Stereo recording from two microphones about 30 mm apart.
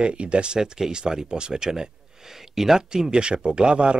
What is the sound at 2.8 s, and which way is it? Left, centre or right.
Speech, right.